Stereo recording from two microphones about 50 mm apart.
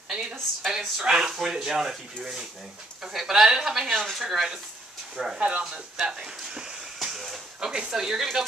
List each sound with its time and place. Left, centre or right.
0.1 s speech: centre
0.6 s speech: centre
3.0 s speech: centre
5.4 s speech: right
7.0 s a sound: centre
7.7 s speech: centre